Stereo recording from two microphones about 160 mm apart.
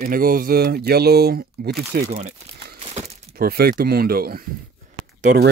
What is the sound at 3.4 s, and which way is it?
Speech, 65° right (ahead or behind).